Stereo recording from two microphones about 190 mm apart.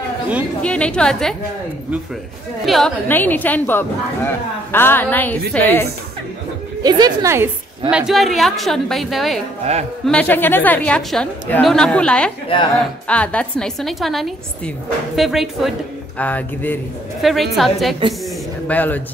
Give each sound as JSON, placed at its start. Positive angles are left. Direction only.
{"t": 0.6, "sound": "a woman's voice", "side_deg": 5}
{"t": 2.6, "sound": "a woman's voice", "side_deg": 0}
{"t": 6.8, "sound": "a woman's voice", "side_deg": -20}
{"t": 8.1, "sound": "a woman's voice", "side_deg": 0}